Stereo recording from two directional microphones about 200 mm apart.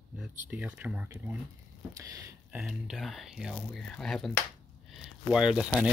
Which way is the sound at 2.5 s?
5° right (ahead or behind).